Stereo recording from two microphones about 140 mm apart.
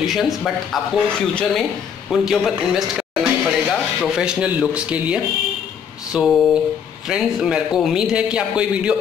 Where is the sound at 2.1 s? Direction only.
Centre (ahead or behind).